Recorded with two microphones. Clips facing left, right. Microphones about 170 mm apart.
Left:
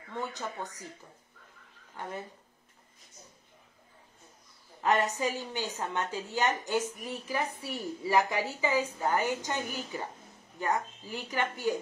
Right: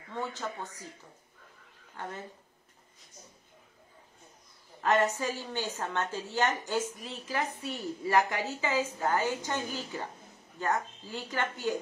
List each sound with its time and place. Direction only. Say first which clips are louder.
0.1 s a woman's voice: right 1 dB; 15° left (ahead or behind)
4.8 s a woman's voice: right 1 dB; 15° left (ahead or behind)